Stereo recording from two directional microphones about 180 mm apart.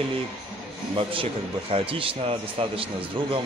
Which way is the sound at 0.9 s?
30° right (ahead or behind).